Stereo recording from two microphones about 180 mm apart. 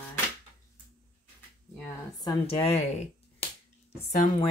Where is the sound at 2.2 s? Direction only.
25° left (ahead or behind).